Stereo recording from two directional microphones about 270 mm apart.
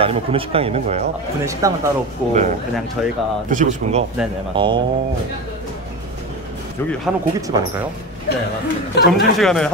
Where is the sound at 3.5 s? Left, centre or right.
Right.